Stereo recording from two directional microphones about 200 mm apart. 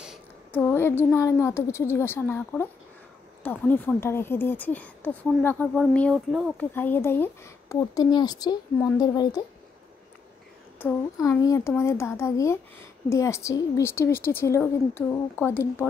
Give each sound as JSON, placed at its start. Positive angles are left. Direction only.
{"t": 0.5, "sound": "a woman's voice", "side_deg": 10}
{"t": 6.7, "sound": "speech", "side_deg": 10}
{"t": 10.8, "sound": "a woman's voice", "side_deg": 15}